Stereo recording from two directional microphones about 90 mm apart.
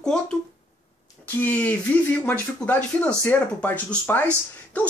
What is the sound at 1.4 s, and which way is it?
Speech, 20° left (ahead or behind).